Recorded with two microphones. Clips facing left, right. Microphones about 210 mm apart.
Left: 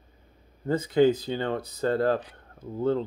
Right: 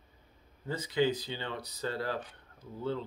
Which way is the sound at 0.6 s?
50° left (ahead or behind).